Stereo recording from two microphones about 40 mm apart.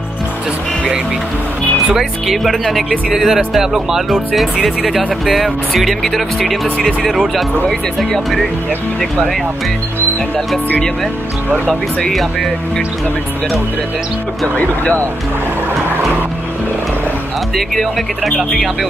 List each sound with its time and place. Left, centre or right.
2.0 s speech: centre
12.1 s speech: centre
14.6 s speech: left
17.6 s speech: centre